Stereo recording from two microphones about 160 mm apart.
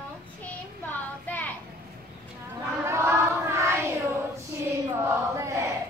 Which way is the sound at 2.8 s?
15° right (ahead or behind).